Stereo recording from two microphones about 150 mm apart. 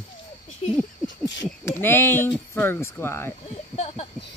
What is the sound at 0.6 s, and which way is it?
Speech, 40° left (ahead or behind).